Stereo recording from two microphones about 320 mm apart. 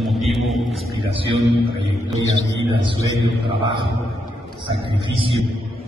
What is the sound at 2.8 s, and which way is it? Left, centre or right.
Speech, centre.